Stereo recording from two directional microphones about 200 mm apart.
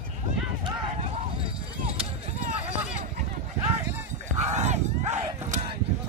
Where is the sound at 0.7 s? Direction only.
30° right (ahead or behind).